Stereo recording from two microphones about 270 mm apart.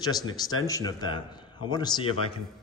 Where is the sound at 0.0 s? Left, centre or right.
Centre.